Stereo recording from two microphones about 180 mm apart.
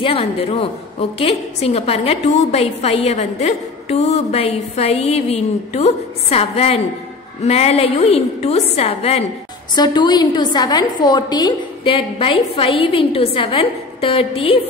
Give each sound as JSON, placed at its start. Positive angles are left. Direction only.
{"t": 0.0, "sound": "a woman's voice", "side_deg": 30}
{"t": 9.8, "sound": "a woman's voice", "side_deg": 25}